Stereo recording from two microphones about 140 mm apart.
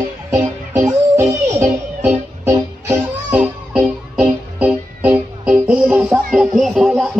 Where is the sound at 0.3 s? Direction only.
15° right (ahead or behind).